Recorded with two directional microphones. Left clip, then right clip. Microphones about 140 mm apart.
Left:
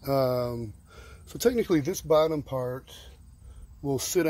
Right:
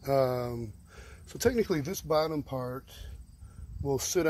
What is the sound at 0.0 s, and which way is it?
Speech, 20° left (ahead or behind).